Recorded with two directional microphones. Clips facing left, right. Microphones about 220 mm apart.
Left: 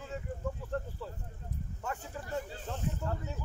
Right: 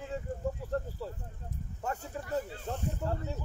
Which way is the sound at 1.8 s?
40° right (ahead or behind).